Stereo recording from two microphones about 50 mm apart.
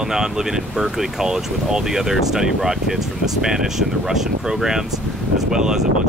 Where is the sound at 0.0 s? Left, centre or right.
Centre.